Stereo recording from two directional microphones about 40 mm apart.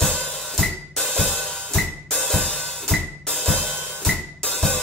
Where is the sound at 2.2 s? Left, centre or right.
Centre.